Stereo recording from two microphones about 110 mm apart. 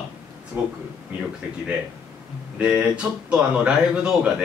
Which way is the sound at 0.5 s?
20° right (ahead or behind).